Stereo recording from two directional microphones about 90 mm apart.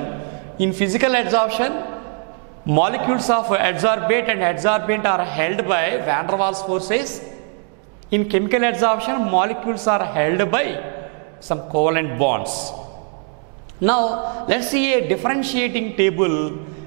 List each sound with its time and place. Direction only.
0.6 s a man's voice: 10° right (ahead or behind)
8.1 s a man's voice: 10° right (ahead or behind)
13.8 s a man's voice: 10° right (ahead or behind)